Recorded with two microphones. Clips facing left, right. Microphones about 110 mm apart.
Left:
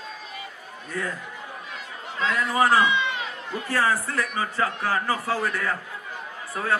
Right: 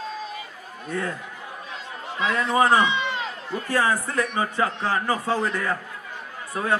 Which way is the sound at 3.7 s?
15° right (ahead or behind).